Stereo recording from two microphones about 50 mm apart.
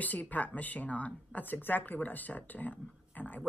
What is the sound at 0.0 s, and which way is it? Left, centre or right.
A woman's voice, left.